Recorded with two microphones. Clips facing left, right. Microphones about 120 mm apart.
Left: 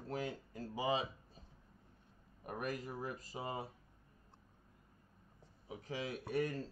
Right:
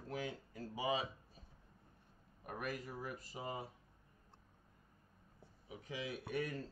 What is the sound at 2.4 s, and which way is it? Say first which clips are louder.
Speech: left 2 dB; 35° left (ahead or behind).